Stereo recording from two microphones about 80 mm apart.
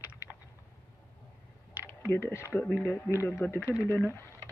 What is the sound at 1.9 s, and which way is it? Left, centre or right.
Speech, left.